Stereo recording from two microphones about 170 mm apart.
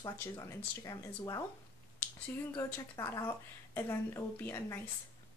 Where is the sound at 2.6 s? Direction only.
15° left (ahead or behind).